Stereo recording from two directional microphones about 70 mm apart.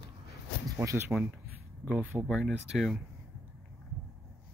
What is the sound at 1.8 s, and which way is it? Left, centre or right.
Speech, right.